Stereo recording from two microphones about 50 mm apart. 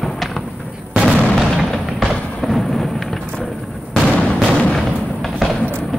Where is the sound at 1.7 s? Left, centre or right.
Centre.